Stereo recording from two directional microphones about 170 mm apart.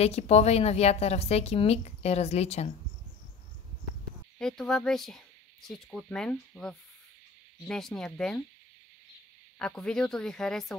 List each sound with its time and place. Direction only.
0.0 s a woman's voice: 40° left (ahead or behind)
4.4 s speech: 5° left (ahead or behind)
9.6 s speech: 5° left (ahead or behind)